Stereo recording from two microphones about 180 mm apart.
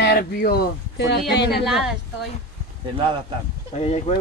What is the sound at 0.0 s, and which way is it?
Speech, 60° left (ahead or behind).